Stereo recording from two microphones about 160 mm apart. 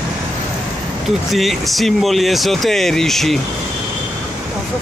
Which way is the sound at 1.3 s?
Centre (ahead or behind).